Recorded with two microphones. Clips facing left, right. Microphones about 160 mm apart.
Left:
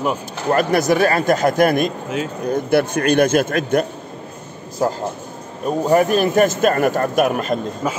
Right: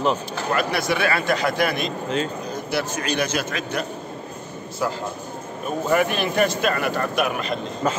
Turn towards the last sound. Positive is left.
turn(degrees=45)  # may be behind; listen again after turning